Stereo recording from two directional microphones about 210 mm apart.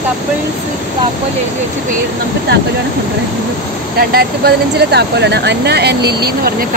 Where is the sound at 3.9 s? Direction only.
50° right (ahead or behind).